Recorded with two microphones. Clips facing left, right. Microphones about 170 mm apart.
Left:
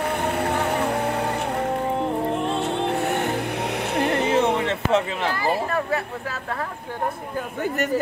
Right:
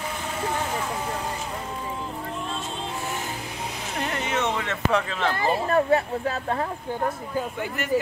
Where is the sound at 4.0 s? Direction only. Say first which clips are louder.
Left 7 dB; 65° left (ahead or behind).